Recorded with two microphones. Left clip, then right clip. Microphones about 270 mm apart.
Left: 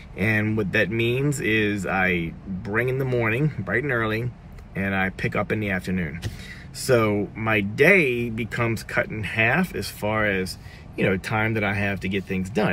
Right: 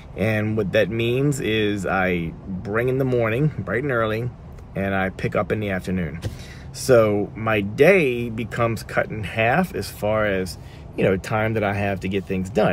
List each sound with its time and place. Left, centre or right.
0.2 s speech: centre